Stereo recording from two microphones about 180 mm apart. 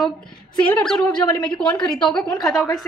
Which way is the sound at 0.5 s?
10° left (ahead or behind).